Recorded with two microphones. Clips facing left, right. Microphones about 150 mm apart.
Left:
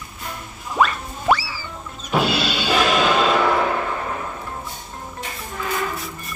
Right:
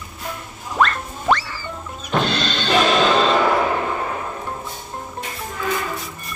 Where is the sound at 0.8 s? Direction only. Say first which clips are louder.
Even; 10° left (ahead or behind).